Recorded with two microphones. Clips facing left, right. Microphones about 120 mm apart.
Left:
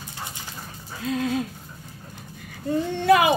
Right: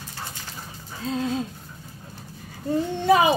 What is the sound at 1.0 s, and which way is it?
Speech, 30° right (ahead or behind).